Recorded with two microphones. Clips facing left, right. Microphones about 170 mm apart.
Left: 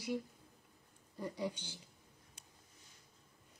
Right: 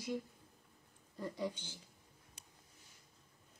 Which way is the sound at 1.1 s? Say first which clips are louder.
Even; 15° left (ahead or behind).